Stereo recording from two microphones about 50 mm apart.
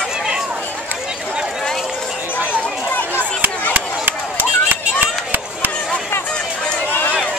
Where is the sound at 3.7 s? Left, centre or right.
Right.